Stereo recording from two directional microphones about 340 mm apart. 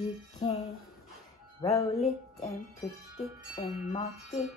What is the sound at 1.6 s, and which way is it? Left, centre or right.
Music, centre.